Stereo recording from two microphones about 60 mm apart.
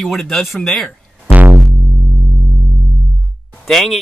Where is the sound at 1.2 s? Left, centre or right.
Right.